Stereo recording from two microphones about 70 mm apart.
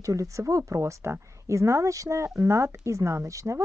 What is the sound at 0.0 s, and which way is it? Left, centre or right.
Speech, right.